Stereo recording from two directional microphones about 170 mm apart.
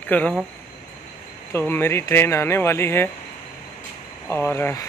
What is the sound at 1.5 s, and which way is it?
Speech, 15° left (ahead or behind).